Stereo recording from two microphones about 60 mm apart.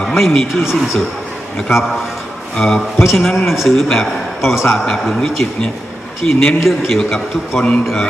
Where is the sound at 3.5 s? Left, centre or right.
Centre.